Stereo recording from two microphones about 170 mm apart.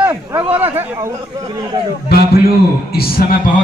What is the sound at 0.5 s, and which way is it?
A man's voice, 10° right (ahead or behind).